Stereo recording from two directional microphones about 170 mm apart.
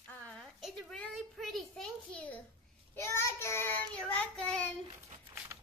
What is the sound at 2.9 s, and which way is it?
Child singing, 15° left (ahead or behind).